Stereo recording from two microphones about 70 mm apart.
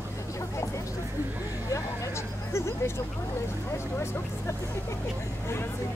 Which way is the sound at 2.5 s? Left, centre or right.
Left.